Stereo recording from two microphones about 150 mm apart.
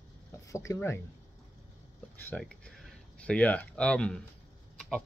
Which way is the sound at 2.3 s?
5° left (ahead or behind).